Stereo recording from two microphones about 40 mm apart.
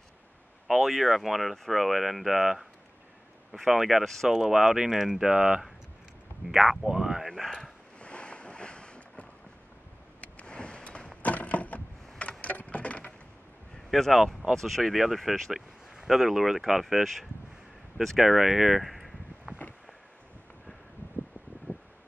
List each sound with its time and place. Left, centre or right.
0.7 s speech: centre
3.5 s speech: centre
6.4 s speech: centre
6.9 s speech: centre
8.0 s boat: left
10.2 s power windows: left
11.3 s a sound: left
13.8 s speech: centre
18.8 s a sound: centre
21.7 s wind: left